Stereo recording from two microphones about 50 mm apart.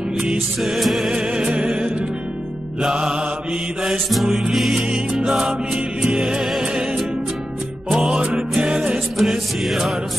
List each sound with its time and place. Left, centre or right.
0.6 s music: centre
1.1 s music: centre
4.3 s music: centre
6.4 s music: centre
7.9 s music: centre
9.2 s music: centre